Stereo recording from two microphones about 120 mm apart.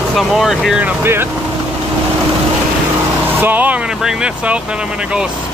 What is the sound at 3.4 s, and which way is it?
Speech, 15° right (ahead or behind).